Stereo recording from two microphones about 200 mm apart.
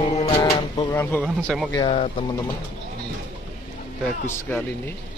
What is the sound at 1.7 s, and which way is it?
Speech, 25° left (ahead or behind).